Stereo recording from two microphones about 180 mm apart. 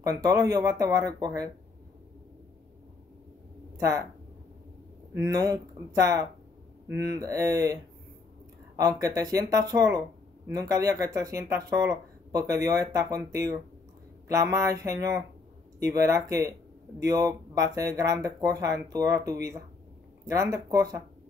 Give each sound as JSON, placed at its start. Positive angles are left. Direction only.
{"t": 0.2, "sound": "speech", "side_deg": -15}
{"t": 3.7, "sound": "speech", "side_deg": -20}
{"t": 5.1, "sound": "speech", "side_deg": -20}
{"t": 16.3, "sound": "speech", "side_deg": -20}
{"t": 20.5, "sound": "speech", "side_deg": -20}